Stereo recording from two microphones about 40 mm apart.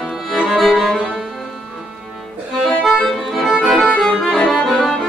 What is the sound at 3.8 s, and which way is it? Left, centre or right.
Accordion, left.